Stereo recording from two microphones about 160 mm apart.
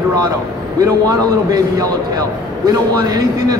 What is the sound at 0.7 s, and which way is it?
A man's voice, 20° right (ahead or behind).